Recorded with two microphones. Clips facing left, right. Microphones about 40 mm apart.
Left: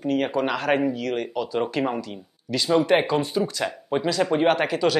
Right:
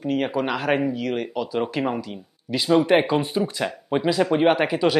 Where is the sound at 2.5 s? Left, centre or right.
Centre.